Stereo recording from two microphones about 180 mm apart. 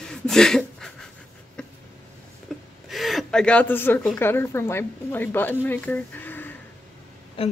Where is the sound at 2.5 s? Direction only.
Centre (ahead or behind).